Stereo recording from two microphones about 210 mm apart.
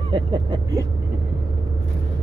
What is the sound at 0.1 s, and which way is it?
Speech, 20° right (ahead or behind).